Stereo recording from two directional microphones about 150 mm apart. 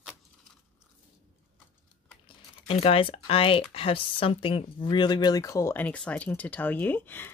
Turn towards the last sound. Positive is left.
turn(degrees=15)  # may be behind; listen again after turning